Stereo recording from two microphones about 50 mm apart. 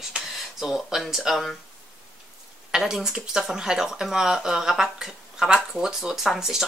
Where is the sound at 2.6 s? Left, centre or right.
Centre.